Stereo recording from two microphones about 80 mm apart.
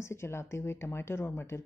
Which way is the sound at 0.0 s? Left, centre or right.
Left.